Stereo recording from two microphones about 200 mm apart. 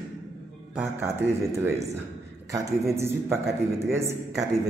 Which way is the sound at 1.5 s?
15° right (ahead or behind).